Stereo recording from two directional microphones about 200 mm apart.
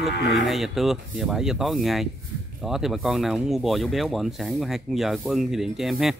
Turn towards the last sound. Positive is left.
turn(degrees=0)  # may be behind; listen again after turning